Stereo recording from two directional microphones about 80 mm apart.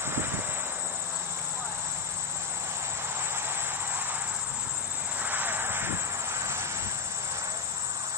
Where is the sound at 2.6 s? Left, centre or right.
Right.